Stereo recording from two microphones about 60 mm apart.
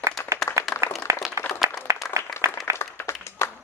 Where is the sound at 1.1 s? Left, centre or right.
Right.